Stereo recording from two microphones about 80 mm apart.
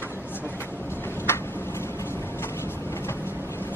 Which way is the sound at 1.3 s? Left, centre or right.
Left.